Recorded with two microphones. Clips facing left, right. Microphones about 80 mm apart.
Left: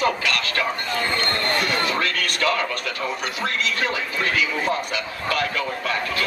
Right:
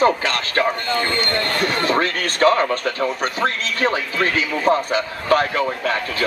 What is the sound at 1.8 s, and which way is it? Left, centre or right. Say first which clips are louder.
A man's voice: right 4 dB; right.